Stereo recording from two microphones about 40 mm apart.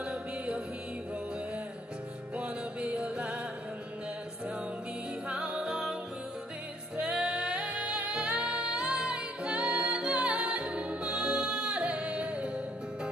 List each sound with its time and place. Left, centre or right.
0.0 s music: right
2.3 s music: right
5.3 s music: right
7.0 s music: right